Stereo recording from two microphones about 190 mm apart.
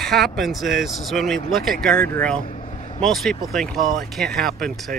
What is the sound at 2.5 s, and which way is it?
Vehicle, 35° left (ahead or behind).